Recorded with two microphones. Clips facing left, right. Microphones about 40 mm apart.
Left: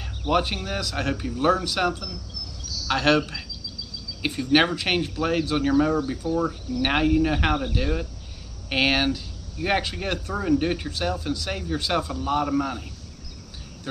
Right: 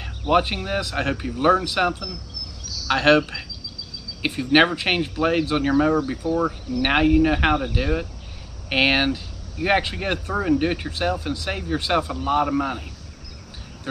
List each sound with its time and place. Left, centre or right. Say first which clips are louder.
0.3 s speech: right 4 dB; centre